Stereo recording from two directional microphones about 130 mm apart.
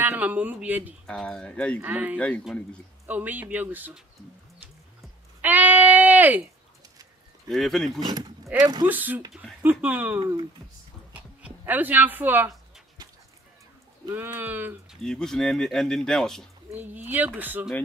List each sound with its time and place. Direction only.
0.0 s speech: 15° right (ahead or behind)
1.0 s speech: 5° left (ahead or behind)
1.8 s speech: 10° right (ahead or behind)
2.1 s speech: 10° left (ahead or behind)
3.1 s speech: 15° right (ahead or behind)
5.4 s a sound: 15° right (ahead or behind)
7.4 s speech: 5° left (ahead or behind)
8.0 s speech: 35° right (ahead or behind)
8.8 s speech: 15° right (ahead or behind)
11.1 s a sound: 10° right (ahead or behind)
14.1 s speech: 15° right (ahead or behind)
14.9 s speech: 5° left (ahead or behind)
16.7 s speech: 15° right (ahead or behind)